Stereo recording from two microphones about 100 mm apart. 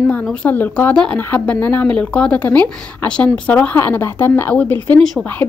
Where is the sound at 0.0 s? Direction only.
15° left (ahead or behind).